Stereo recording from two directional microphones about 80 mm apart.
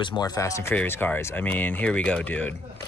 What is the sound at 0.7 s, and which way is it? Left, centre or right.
Speech, left.